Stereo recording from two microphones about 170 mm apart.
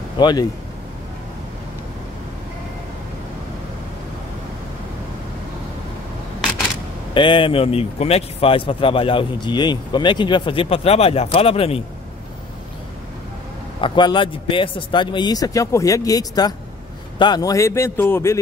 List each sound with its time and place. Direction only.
0.2 s a man's voice: 25° left (ahead or behind)
7.2 s speech: 30° left (ahead or behind)
13.7 s a man's voice: 30° left (ahead or behind)